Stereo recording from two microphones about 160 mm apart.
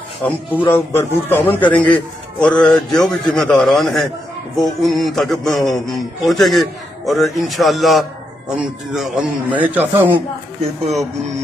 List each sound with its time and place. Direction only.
0.2 s a man's voice: 10° left (ahead or behind); by 10.2 s 10° right (ahead or behind)